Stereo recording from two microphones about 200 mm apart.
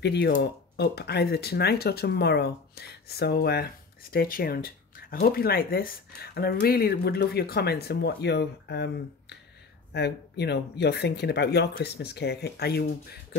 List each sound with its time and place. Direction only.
0.0 s speech: 55° left (ahead or behind)